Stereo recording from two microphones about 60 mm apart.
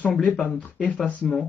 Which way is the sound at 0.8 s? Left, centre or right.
Centre.